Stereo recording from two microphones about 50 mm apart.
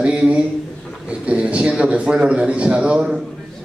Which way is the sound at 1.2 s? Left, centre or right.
Right.